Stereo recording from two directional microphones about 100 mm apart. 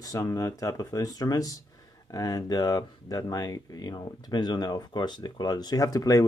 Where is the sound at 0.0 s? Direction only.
30° left (ahead or behind).